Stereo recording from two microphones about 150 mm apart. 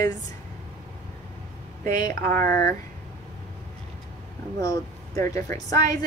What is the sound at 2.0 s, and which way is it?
Speech, 20° left (ahead or behind).